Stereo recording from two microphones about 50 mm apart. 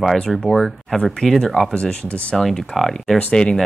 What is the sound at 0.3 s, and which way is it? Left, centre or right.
Speech, centre.